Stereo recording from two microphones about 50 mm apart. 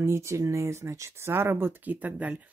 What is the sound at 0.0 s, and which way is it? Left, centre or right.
Speech, right.